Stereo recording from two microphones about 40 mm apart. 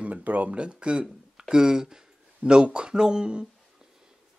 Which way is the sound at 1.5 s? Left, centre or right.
Centre.